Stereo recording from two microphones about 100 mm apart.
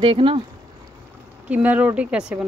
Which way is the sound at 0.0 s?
60° right (ahead or behind).